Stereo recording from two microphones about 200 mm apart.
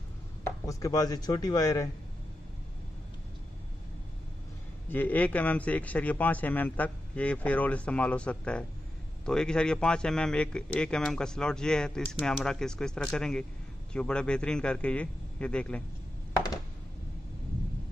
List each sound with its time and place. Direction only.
0.7 s a man's voice: 15° left (ahead or behind)
4.8 s a man's voice: 10° left (ahead or behind)